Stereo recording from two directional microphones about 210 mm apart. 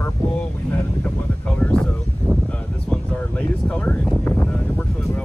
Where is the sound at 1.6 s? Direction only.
5° left (ahead or behind).